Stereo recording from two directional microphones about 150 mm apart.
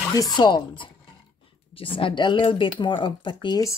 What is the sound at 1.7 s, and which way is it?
Speech, 35° left (ahead or behind).